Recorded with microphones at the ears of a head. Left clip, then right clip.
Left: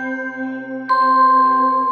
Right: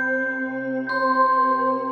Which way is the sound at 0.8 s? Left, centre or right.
Left.